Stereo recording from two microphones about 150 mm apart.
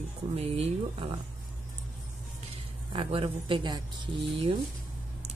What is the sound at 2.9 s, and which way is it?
Speech, 35° right (ahead or behind).